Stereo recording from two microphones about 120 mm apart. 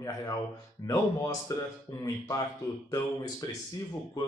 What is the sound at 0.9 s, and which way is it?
Speech, 30° left (ahead or behind).